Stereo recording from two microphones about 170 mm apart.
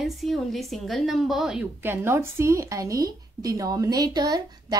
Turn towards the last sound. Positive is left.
turn(degrees=-25)  # may be behind; listen again after turning